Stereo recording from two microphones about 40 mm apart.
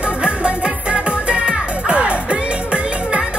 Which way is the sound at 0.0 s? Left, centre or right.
Right.